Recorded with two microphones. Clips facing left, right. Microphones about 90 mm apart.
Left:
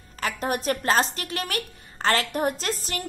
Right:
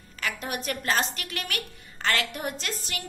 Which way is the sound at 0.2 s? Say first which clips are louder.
Left 5 dB; 40° left (ahead or behind).